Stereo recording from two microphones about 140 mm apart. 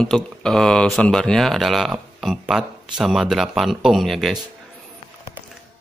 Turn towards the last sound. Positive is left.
turn(degrees=0)  # may be behind; listen again after turning